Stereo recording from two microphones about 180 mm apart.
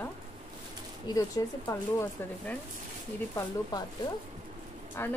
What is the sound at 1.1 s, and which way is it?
A woman's voice, 20° left (ahead or behind).